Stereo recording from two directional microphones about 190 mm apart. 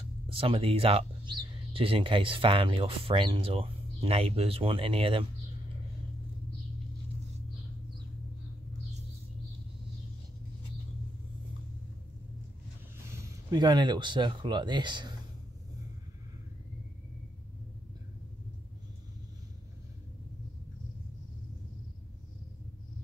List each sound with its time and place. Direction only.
0.3 s speech: 30° right (ahead or behind)
13.1 s speech: 15° right (ahead or behind)